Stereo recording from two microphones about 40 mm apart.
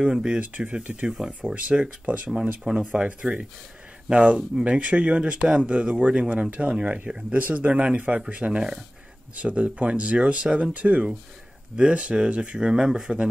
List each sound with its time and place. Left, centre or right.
0.0 s speech: right
0.4 s speech: right
1.0 s speech: centre
1.4 s speech: right
2.0 s speech: right
2.6 s speech: right
3.2 s speech: right
7.3 s speech: right
11.7 s speech: right